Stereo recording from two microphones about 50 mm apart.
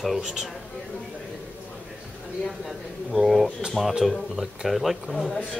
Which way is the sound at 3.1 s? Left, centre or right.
Centre.